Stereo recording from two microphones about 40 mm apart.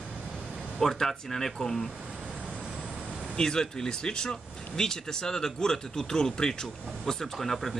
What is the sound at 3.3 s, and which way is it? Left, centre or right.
Speech, centre.